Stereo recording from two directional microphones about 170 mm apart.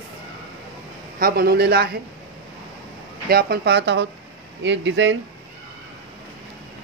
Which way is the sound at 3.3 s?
65° right (ahead or behind).